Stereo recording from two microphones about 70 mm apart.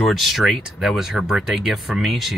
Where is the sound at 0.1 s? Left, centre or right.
Centre.